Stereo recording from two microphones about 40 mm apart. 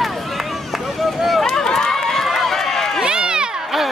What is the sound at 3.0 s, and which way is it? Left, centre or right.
Crowd, right.